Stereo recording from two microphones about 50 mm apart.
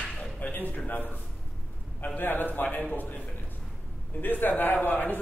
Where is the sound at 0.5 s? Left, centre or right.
Left.